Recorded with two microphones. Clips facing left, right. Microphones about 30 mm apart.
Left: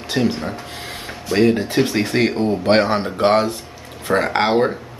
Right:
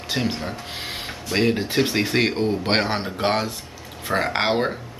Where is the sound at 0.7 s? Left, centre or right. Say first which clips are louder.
Even; right.